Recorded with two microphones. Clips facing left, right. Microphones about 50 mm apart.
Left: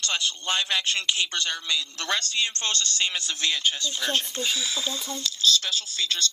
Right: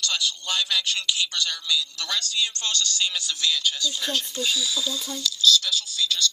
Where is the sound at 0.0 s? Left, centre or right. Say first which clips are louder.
Even; left.